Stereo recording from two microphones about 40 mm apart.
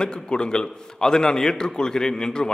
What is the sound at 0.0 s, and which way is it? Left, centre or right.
A man's voice, left.